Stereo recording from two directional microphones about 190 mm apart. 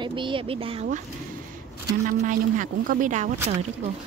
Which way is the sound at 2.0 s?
45° right (ahead or behind).